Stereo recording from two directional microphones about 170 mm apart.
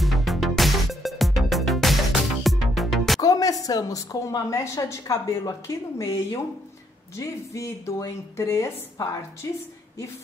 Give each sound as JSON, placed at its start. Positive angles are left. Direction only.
{"t": 0.0, "sound": "music", "side_deg": 0}
{"t": 3.2, "sound": "a woman's voice", "side_deg": 20}